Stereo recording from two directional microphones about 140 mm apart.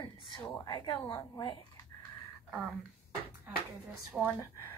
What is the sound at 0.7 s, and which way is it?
Speech, 35° left (ahead or behind).